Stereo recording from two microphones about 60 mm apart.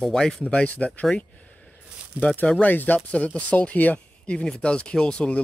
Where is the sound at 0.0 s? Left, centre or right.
Centre.